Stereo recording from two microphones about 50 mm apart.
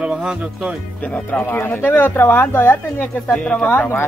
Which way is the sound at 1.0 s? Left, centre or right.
Left.